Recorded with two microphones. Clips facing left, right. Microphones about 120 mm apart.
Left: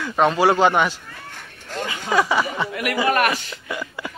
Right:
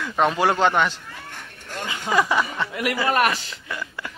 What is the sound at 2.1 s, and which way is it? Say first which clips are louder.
Speech: left 1 dB; centre (ahead or behind).